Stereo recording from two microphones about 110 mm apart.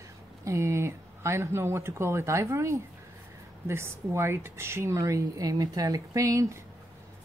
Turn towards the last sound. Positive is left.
turn(degrees=-25)  # may be behind; listen again after turning